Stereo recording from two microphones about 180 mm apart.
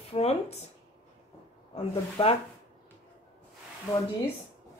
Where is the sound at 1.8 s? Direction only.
30° left (ahead or behind).